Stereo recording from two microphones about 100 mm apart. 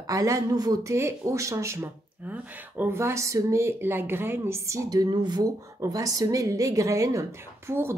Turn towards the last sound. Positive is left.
turn(degrees=-25)  # may be behind; listen again after turning